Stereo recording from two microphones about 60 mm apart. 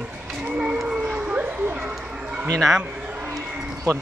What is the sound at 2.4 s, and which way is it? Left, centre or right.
Speech, centre.